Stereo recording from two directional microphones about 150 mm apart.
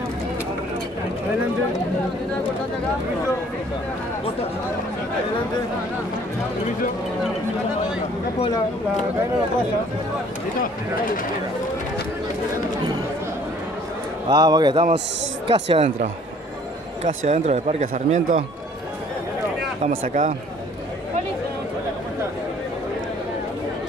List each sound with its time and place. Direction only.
14.3 s a man's voice: 25° right (ahead or behind)
15.4 s speech: 40° right (ahead or behind)
17.3 s speech: 50° right (ahead or behind)
19.9 s speech: 60° right (ahead or behind)